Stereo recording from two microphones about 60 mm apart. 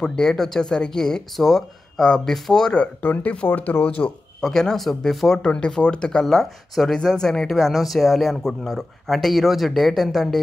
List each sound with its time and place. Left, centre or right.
0.0 s speech: centre
2.8 s speech: left
4.4 s speech: centre
5.4 s speech: centre